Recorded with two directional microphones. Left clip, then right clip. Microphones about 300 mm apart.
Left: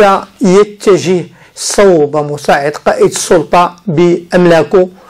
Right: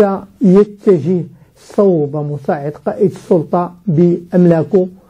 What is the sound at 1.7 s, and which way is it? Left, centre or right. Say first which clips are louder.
Speech: left 6 dB; left.